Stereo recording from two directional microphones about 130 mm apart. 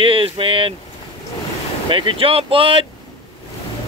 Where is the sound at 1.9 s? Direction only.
40° right (ahead or behind).